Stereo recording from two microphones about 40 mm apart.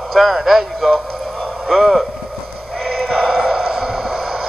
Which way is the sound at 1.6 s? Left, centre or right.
Centre.